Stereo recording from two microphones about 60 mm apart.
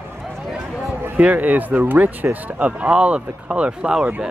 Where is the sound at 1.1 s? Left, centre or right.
Right.